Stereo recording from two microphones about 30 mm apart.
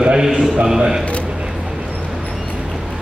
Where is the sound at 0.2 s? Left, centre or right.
Centre.